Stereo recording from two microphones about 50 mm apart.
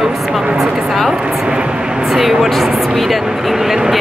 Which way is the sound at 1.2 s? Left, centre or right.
Centre.